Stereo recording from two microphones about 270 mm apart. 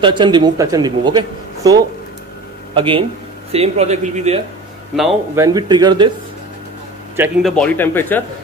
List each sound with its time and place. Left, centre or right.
0.0 s a man's voice: centre
4.9 s speech: centre
5.4 s a man's voice: centre
7.2 s speech: centre